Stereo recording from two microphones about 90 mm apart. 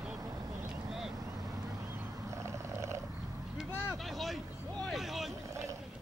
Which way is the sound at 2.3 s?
35° right (ahead or behind).